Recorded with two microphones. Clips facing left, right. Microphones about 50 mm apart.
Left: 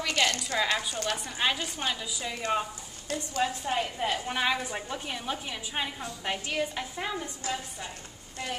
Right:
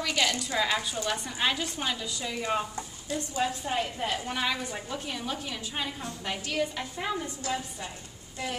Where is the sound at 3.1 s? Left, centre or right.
Left.